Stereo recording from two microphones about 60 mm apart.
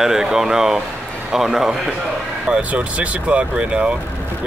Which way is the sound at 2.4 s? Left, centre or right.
Centre.